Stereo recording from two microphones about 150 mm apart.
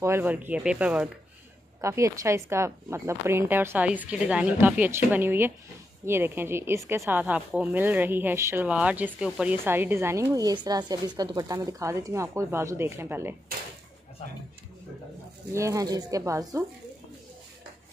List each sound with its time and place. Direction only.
0.0 s a woman's voice: 15° right (ahead or behind)
1.8 s a woman's voice: 20° right (ahead or behind)
15.5 s speech: 20° right (ahead or behind)